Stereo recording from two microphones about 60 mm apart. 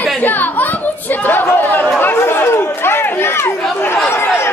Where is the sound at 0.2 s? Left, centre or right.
Left.